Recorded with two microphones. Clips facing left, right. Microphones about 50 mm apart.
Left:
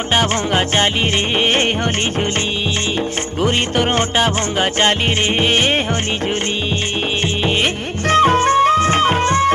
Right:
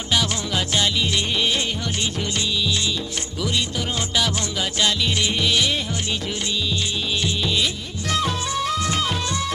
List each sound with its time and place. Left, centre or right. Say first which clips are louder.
0.1 s music: left 6 dB; left
3.4 s music: left 9 dB; left
7.4 s music: left 6 dB; left